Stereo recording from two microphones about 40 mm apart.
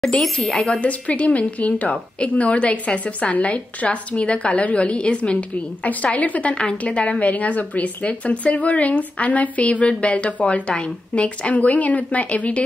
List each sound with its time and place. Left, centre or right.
0.0 s speech: centre
0.5 s a woman's voice: left
6.1 s a woman's voice: left